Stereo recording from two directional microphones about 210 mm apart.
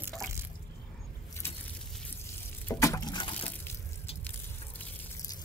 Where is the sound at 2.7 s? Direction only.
15° left (ahead or behind).